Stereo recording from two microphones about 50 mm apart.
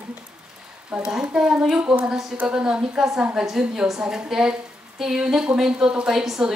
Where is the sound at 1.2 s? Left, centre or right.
Centre.